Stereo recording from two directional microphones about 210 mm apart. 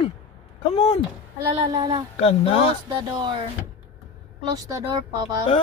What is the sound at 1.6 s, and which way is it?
Speech, 20° right (ahead or behind).